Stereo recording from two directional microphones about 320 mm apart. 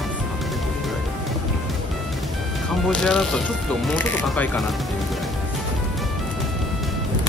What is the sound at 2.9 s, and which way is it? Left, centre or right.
Speech, centre.